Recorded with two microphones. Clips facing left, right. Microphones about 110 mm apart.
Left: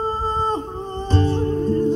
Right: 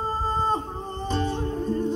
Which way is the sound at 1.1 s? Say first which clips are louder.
Left 7 dB; 10° right (ahead or behind).